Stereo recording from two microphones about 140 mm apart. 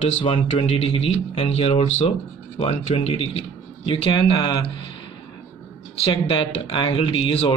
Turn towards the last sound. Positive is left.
turn(degrees=40)  # may be behind; listen again after turning